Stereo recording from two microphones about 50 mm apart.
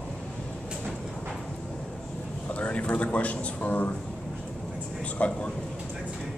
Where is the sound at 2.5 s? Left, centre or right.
Left.